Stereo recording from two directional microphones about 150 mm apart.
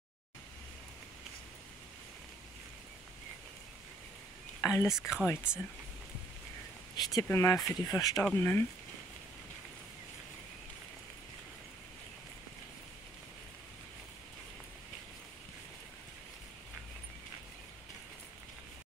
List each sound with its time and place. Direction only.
4.6 s whispering: 20° left (ahead or behind)
4.8 s speech: 5° right (ahead or behind)
5.2 s speech: 15° left (ahead or behind)
7.0 s speech: 25° left (ahead or behind)
8.2 s speech: 10° left (ahead or behind)